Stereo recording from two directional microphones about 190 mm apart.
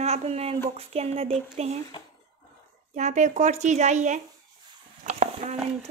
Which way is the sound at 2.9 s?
40° right (ahead or behind).